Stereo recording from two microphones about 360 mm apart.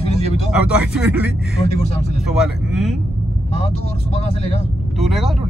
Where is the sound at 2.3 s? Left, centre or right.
Centre.